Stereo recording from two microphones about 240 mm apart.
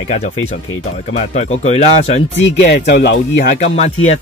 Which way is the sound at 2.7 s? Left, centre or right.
Left.